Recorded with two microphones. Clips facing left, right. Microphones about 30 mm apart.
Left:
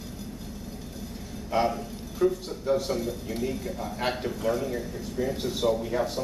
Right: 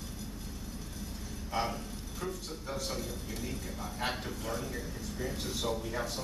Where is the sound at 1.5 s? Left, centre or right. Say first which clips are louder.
Left 9 dB; centre.